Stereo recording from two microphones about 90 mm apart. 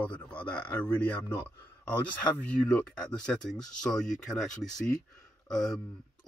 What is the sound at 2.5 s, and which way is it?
Speech, 15° left (ahead or behind).